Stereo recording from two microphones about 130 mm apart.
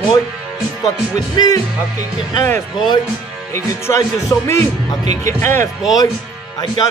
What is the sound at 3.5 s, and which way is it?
Speech, 20° left (ahead or behind).